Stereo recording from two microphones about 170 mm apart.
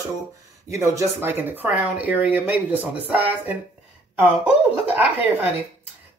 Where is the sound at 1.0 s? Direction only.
15° right (ahead or behind).